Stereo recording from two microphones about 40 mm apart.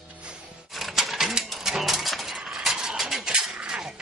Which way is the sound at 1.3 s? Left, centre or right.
Centre.